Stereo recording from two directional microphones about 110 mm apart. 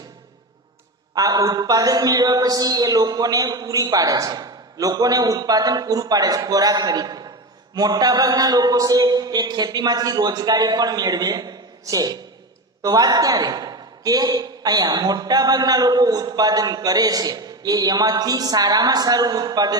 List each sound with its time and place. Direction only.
1.1 s a man's voice: 35° right (ahead or behind)